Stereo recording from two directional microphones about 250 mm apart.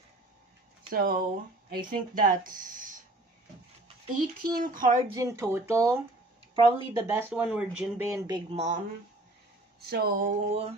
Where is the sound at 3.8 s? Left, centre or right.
Right.